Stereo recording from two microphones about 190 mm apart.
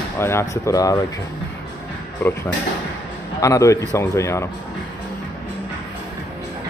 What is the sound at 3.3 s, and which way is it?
Speech, 15° left (ahead or behind).